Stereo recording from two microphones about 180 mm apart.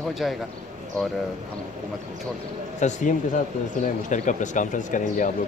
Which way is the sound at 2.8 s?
40° left (ahead or behind).